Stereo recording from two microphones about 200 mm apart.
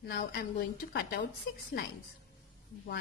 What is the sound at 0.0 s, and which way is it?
A woman's voice, 50° left (ahead or behind).